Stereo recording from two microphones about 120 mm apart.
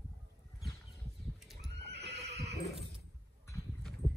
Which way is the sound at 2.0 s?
60° right (ahead or behind).